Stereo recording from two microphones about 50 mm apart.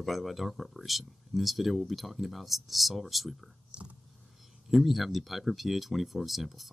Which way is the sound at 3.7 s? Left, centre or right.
Right.